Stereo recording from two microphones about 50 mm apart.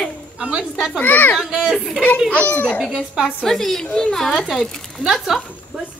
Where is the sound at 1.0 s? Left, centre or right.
Left.